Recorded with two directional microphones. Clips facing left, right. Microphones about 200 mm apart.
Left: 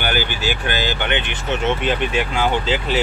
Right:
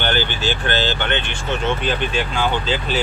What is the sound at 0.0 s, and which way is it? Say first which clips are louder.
Speech: right 1 dB; 10° left (ahead or behind).